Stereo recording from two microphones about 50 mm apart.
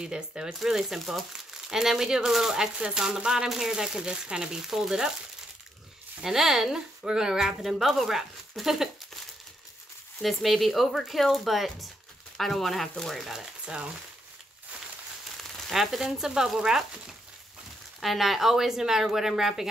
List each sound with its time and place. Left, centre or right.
0.0 s a woman's voice: centre
0.6 s a woman's voice: centre
6.2 s a woman's voice: centre
10.2 s speech: centre
13.2 s a woman's voice: centre
15.6 s a woman's voice: centre
18.0 s a woman's voice: centre